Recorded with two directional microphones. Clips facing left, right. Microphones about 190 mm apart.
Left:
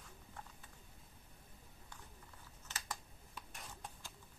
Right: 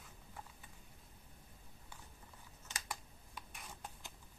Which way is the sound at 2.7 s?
15° right (ahead or behind).